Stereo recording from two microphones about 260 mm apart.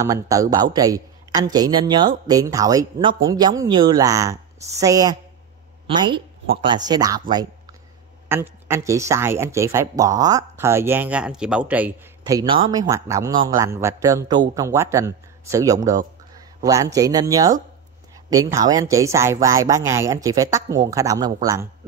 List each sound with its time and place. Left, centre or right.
0.0 s speech: centre